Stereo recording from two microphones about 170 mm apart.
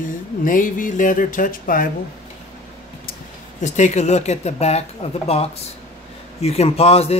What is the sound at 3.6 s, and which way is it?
A man's voice, 45° left (ahead or behind).